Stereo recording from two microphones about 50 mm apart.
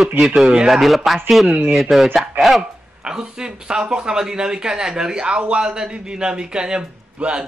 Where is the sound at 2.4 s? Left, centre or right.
Right.